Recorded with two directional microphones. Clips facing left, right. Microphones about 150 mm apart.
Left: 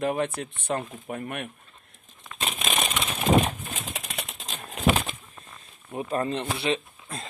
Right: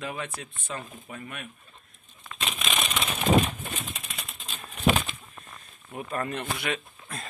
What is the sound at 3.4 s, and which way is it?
Bird, 80° left.